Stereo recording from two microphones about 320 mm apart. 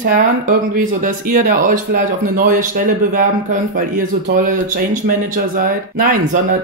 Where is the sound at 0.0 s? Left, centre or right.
Right.